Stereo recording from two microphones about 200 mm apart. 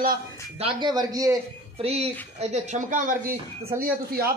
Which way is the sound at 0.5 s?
25° right (ahead or behind).